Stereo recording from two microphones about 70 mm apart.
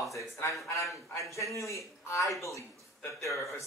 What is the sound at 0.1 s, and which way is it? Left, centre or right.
Speech, left.